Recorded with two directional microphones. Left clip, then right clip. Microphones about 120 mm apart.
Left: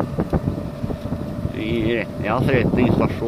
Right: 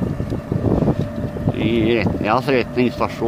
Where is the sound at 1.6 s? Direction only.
75° right (ahead or behind).